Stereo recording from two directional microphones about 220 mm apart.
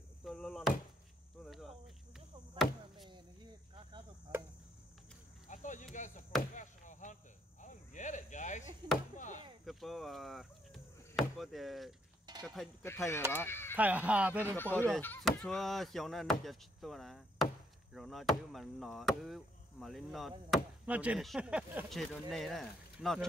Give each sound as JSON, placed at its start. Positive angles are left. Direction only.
{"t": 0.2, "sound": "chop", "side_deg": 0}
{"t": 1.4, "sound": "cricket", "side_deg": 0}
{"t": 4.3, "sound": "cricket", "side_deg": -10}
{"t": 5.5, "sound": "cricket", "side_deg": 35}
{"t": 6.5, "sound": "chop", "side_deg": 35}
{"t": 7.6, "sound": "speech", "side_deg": 35}
{"t": 9.7, "sound": "speech", "side_deg": 0}
{"t": 13.7, "sound": "speech", "side_deg": -5}
{"t": 14.9, "sound": "speech", "side_deg": 5}